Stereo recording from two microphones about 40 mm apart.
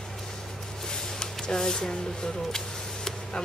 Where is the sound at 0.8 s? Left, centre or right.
Centre.